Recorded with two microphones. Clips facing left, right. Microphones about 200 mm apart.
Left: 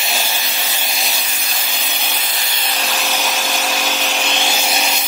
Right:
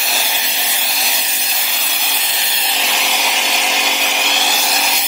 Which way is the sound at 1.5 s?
Centre (ahead or behind).